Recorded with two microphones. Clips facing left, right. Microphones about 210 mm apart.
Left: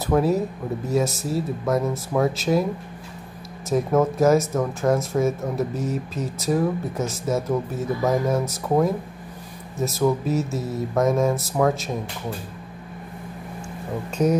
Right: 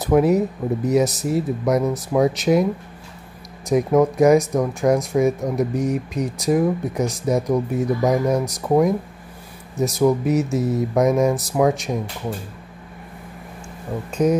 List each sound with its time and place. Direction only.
0.0 s speech: 20° right (ahead or behind)
3.6 s speech: 15° right (ahead or behind)